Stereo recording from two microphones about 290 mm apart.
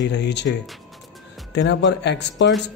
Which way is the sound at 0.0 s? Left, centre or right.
Left.